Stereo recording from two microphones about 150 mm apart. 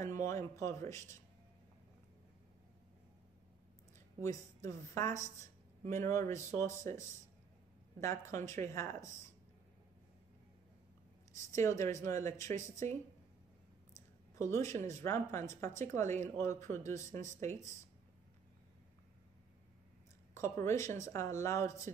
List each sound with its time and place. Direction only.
0.0 s a sound: 20° left (ahead or behind)
4.2 s speech: 20° left (ahead or behind)
11.5 s speech: 20° left (ahead or behind)
14.5 s speech: 20° left (ahead or behind)
20.5 s speech: 20° left (ahead or behind)